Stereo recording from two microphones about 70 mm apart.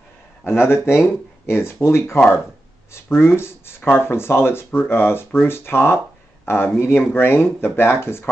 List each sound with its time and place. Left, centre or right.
0.5 s speech: left
3.3 s speech: left